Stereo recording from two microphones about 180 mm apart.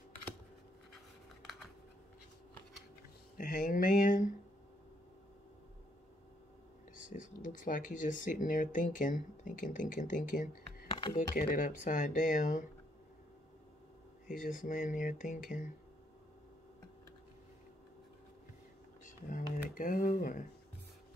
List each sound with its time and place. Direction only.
1.4 s typing: centre (ahead or behind)
3.3 s speech: 50° left (ahead or behind)
7.1 s speech: 45° left (ahead or behind)
10.9 s computer keyboard: 25° left (ahead or behind)
11.3 s speech: 50° left (ahead or behind)
14.2 s speech: 50° left (ahead or behind)
19.0 s speech: 45° left (ahead or behind)